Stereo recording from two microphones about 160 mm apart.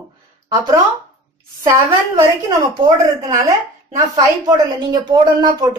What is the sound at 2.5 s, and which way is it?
Speech, 20° right (ahead or behind).